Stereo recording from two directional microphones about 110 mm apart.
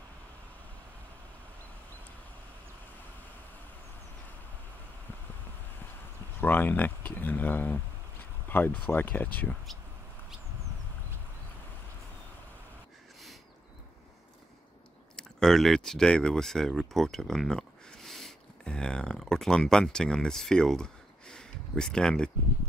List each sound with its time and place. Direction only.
6.4 s speech: 15° left (ahead or behind)
15.1 s speech: 5° left (ahead or behind)